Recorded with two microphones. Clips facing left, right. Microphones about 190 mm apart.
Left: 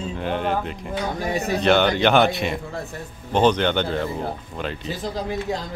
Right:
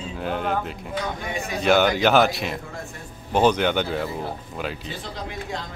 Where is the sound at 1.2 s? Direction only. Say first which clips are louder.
Left 6 dB; 40° left (ahead or behind).